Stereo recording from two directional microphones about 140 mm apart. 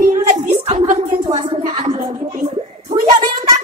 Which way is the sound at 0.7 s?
65° right (ahead or behind).